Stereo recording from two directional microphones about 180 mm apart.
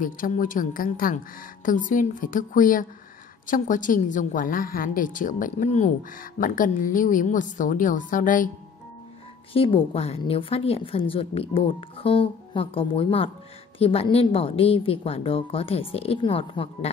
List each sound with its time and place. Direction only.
0.0 s a woman's voice: 50° left (ahead or behind)
9.5 s a woman's voice: 30° left (ahead or behind)